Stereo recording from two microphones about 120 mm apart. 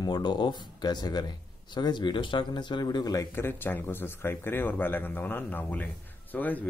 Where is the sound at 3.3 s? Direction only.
20° left (ahead or behind).